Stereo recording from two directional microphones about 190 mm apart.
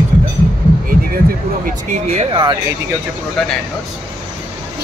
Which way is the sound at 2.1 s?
25° right (ahead or behind).